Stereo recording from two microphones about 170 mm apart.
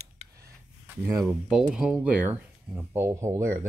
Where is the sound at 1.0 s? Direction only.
10° right (ahead or behind).